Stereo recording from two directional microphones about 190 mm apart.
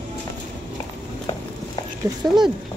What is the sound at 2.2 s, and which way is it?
Speech, 20° right (ahead or behind).